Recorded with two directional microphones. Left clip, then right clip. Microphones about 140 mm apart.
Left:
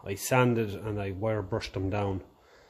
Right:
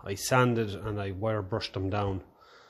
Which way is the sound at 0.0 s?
10° left (ahead or behind).